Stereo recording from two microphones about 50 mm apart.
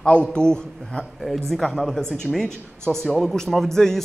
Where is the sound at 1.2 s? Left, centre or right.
Centre.